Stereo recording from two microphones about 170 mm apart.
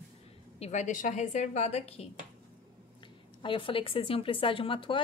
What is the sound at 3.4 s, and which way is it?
A woman's voice, 30° left (ahead or behind).